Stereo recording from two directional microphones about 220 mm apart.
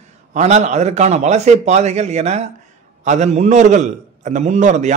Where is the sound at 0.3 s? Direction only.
30° right (ahead or behind).